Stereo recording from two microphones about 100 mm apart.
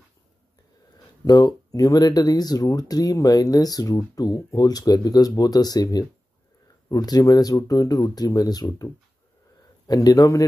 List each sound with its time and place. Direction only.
1.2 s speech: 40° left (ahead or behind)
9.8 s speech: 40° left (ahead or behind)